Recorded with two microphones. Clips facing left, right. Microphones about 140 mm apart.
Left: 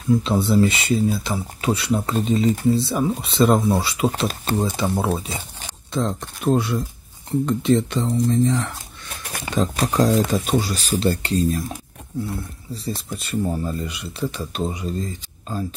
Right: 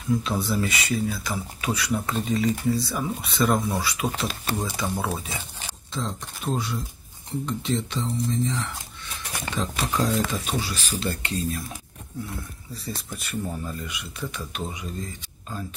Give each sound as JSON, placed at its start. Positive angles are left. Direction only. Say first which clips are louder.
{"t": 0.2, "sound": "speech", "louder": "left 8 dB", "side_deg": 25}
{"t": 4.6, "sound": "speech", "louder": "left 7 dB", "side_deg": 15}
{"t": 5.0, "sound": "speech", "louder": "left 6 dB", "side_deg": 25}
{"t": 5.9, "sound": "speech", "louder": "left 8 dB", "side_deg": 60}
{"t": 9.6, "sound": "speech", "louder": "left 7 dB", "side_deg": 40}